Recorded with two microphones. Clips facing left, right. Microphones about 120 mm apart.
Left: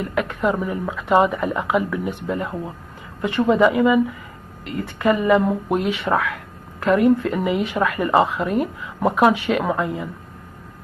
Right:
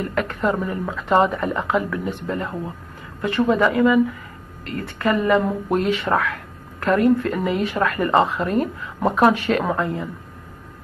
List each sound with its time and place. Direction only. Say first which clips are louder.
0.0 s speech: left 1 dB; 10° left (ahead or behind)